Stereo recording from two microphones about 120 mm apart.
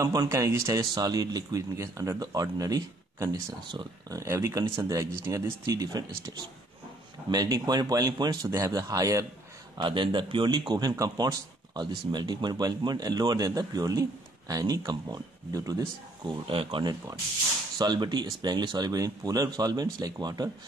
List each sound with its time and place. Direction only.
0.0 s a man's voice: 30° right (ahead or behind)
9.8 s a man's voice: 40° right (ahead or behind)
16.4 s speech: 50° right (ahead or behind)
17.7 s a man's voice: 35° right (ahead or behind)